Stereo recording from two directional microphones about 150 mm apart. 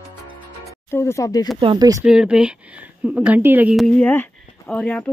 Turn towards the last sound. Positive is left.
turn(degrees=10)  # may be behind; listen again after turning